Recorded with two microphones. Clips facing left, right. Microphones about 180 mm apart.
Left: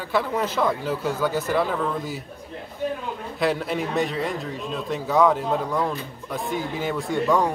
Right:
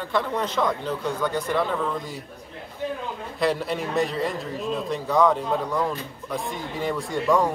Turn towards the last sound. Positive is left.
turn(degrees=0)  # may be behind; listen again after turning